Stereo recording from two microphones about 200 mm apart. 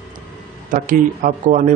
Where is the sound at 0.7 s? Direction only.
40° right (ahead or behind).